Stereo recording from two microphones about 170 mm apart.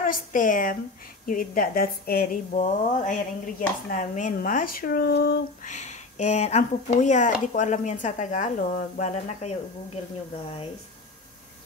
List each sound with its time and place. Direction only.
0.0 s a woman's voice: 50° left (ahead or behind)
2.5 s speech: 45° left (ahead or behind); by 5.4 s 75° left (ahead or behind)
5.6 s speech: 45° left (ahead or behind)